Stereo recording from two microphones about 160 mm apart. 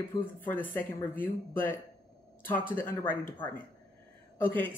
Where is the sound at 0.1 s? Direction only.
10° left (ahead or behind).